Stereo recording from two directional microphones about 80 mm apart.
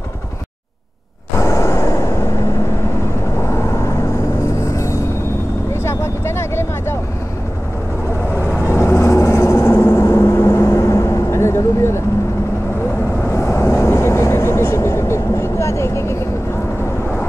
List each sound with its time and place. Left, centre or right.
1.4 s vehicle: left
3.4 s vehicle: left
4.6 s music: left
5.7 s vehicle: left
8.4 s vehicle: left
13.3 s vehicle: left